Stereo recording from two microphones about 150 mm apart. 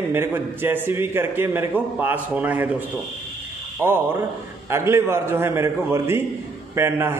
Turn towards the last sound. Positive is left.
turn(degrees=-15)  # may be behind; listen again after turning